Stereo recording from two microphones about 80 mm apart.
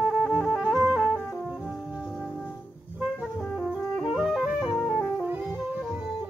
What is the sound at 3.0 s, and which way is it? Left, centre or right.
Music, centre.